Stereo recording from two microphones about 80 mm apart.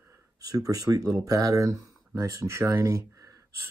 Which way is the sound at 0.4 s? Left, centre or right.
Right.